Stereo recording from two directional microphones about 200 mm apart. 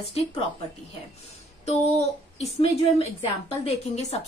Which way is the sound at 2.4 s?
30° left (ahead or behind).